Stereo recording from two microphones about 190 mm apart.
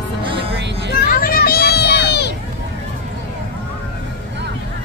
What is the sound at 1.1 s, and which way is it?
Children playing, 50° left (ahead or behind).